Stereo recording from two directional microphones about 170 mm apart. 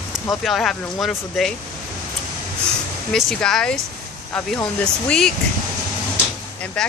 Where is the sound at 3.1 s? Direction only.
Centre (ahead or behind).